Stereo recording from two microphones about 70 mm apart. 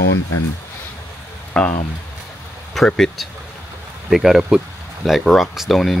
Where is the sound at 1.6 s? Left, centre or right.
Centre.